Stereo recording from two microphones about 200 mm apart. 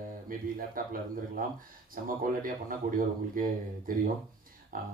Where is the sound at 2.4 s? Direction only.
45° right (ahead or behind).